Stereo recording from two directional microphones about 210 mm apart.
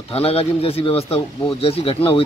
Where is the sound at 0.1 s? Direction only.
30° left (ahead or behind).